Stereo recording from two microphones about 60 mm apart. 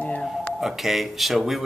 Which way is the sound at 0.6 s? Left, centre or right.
Centre.